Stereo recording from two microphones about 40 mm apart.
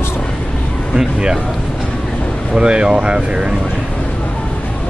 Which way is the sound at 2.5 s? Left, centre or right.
Right.